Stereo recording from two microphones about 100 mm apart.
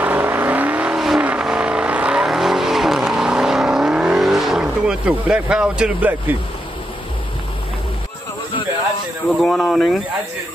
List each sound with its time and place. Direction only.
0.0 s vehicle: 20° right (ahead or behind)
0.9 s vehicle: 5° right (ahead or behind)
9.4 s speech: centre (ahead or behind)